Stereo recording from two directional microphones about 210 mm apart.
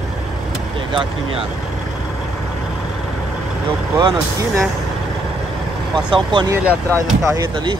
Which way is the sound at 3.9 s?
20° right (ahead or behind).